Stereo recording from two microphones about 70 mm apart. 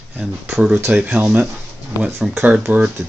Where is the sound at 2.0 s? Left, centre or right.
Right.